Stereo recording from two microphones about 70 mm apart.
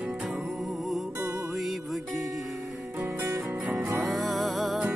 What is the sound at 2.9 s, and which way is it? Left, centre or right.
Music, right.